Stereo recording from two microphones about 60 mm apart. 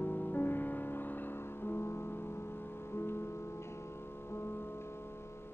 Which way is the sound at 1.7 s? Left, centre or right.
Left.